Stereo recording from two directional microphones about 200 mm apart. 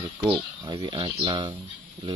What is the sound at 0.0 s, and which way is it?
Speech, 25° right (ahead or behind).